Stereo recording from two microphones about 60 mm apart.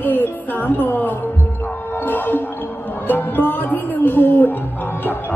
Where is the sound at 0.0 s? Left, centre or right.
Left.